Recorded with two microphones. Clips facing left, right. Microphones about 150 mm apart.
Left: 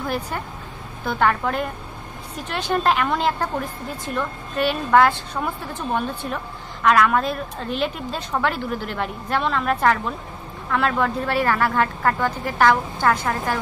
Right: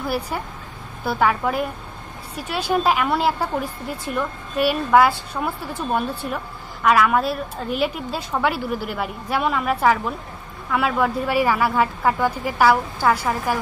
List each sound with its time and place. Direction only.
0.0 s a woman's voice: 10° right (ahead or behind)